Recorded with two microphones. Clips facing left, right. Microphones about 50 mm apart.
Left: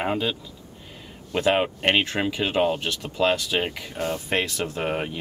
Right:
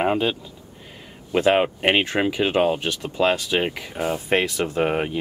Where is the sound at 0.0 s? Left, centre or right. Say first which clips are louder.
Right 4 dB; centre.